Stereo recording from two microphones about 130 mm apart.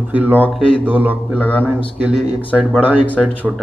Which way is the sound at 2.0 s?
10° right (ahead or behind).